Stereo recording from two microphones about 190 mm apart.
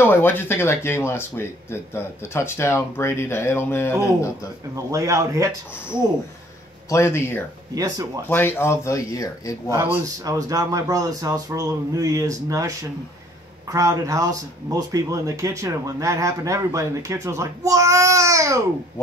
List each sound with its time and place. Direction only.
0.0 s speech: 10° left (ahead or behind)
4.9 s speech: 15° right (ahead or behind)
6.9 s speech: 15° left (ahead or behind)
7.7 s speech: 20° right (ahead or behind)
8.3 s speech: 10° left (ahead or behind)
9.7 s speech: 10° right (ahead or behind)